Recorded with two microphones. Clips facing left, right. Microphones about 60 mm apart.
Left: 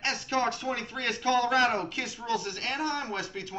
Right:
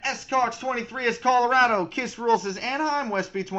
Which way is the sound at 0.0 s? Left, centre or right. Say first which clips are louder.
Right 4 dB; centre.